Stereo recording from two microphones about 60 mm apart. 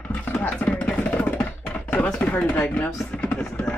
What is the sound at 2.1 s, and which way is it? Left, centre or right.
Speech, left.